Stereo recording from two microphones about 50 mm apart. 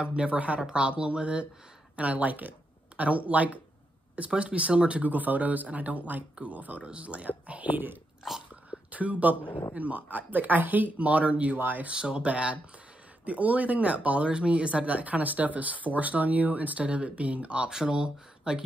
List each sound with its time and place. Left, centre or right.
0.0 s speech: right
8.2 s speech: centre
8.6 s a sound: right
9.8 s speech: right
11.5 s speech: right
11.9 s speech: centre